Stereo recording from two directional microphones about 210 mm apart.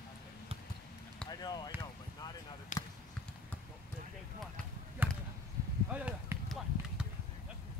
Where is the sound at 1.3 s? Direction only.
20° left (ahead or behind).